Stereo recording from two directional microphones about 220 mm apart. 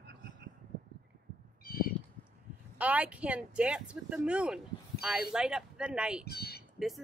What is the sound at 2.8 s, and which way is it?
Speech, 5° right (ahead or behind).